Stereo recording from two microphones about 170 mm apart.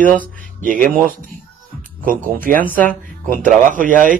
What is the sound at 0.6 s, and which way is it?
Speech, 50° right (ahead or behind).